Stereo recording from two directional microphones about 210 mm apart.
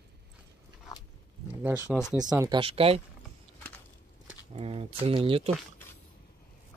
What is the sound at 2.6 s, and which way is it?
Speech, 25° right (ahead or behind).